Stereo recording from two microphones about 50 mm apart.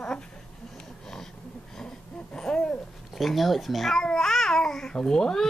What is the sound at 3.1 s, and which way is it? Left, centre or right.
Speech, centre.